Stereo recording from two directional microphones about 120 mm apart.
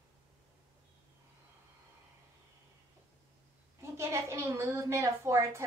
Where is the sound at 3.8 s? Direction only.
25° right (ahead or behind).